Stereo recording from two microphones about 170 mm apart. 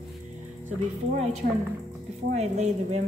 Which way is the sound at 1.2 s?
40° right (ahead or behind).